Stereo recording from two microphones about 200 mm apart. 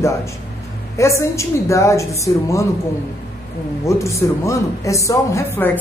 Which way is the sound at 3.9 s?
15° left (ahead or behind).